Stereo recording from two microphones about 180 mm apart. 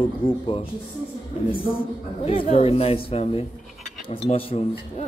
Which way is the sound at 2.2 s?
35° left (ahead or behind).